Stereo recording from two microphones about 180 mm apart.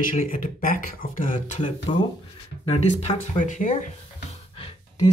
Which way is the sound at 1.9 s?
30° left (ahead or behind).